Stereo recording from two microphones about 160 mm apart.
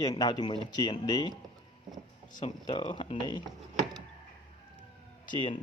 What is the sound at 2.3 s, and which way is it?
Speech, 30° left (ahead or behind).